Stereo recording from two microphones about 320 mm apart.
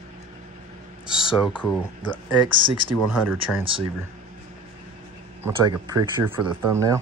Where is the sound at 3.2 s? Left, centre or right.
Right.